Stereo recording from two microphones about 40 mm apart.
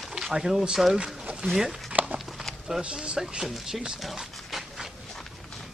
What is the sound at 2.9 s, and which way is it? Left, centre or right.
Speech, right.